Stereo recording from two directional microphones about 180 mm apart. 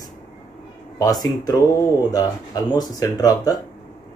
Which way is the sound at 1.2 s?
20° left (ahead or behind).